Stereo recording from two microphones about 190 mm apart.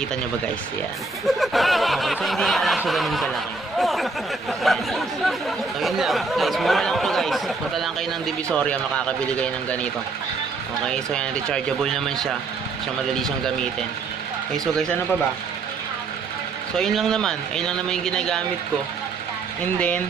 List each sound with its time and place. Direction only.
1.2 s speech: centre (ahead or behind)
10.9 s speech: 5° left (ahead or behind)
16.7 s speech: centre (ahead or behind)